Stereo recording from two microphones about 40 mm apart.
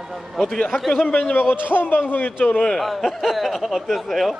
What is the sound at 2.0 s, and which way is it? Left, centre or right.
Speech, left.